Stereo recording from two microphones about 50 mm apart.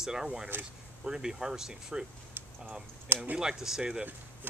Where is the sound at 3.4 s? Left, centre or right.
Centre.